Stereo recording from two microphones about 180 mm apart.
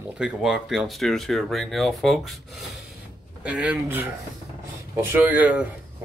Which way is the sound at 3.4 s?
5° right (ahead or behind).